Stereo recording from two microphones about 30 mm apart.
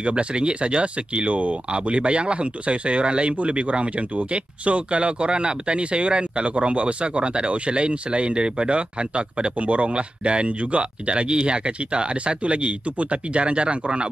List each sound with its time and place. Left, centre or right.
0.0 s speech: right
1.2 s speech: right